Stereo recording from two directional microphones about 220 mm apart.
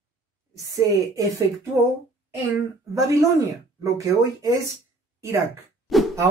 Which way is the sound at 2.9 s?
15° right (ahead or behind).